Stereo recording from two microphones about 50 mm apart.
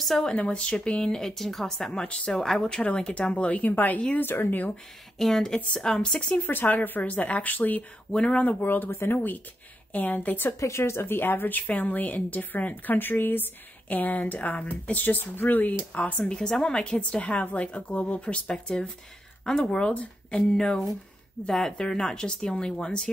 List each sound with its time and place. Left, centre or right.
0.0 s speech: centre
0.3 s a woman's voice: centre; by 4.7 s left
5.2 s a woman's voice: centre; by 6.4 s left
6.4 s a woman's voice: left
8.1 s a woman's voice: centre
8.5 s a woman's voice: left
10.8 s a woman's voice: left
13.8 s a woman's voice: left
16.0 s a woman's voice: left
16.9 s a woman's voice: left
18.5 s a woman's voice: centre
19.9 s speech: left
21.5 s speech: centre
21.7 s a woman's voice: centre